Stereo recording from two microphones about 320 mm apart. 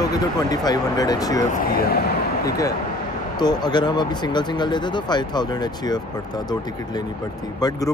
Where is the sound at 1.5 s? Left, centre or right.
Left.